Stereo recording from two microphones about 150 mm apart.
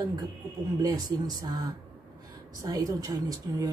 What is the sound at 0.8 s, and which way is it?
Speech, 25° right (ahead or behind).